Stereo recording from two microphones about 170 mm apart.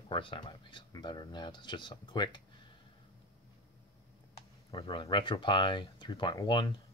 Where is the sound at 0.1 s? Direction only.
30° left (ahead or behind).